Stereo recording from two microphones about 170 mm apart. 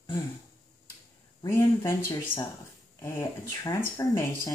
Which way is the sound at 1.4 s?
15° left (ahead or behind).